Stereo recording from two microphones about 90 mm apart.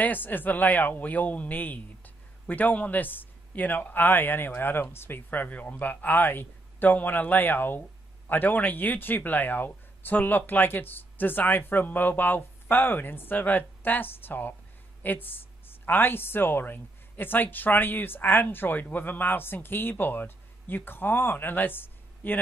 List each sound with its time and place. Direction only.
0.0 s a woman's voice: 20° left (ahead or behind)